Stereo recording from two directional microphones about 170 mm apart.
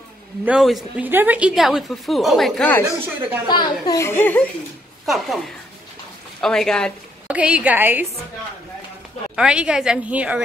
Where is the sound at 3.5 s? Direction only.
25° left (ahead or behind).